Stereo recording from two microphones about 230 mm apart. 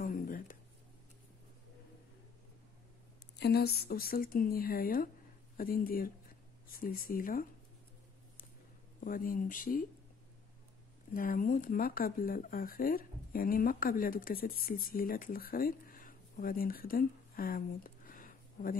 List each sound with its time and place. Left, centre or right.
0.0 s a sound: left
3.3 s speech: left
9.0 s speech: left
11.1 s speech: left